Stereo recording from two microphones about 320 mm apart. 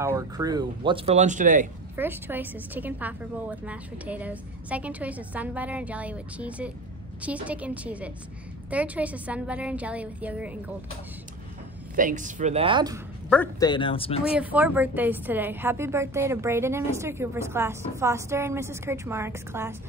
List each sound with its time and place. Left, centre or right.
0.0 s a woman's voice: centre
2.0 s a woman's voice: centre
11.9 s speech: right
13.3 s speech: centre
14.3 s a woman's voice: centre